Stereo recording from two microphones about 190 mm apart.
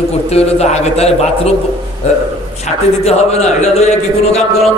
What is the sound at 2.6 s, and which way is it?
A man's voice, 35° left (ahead or behind).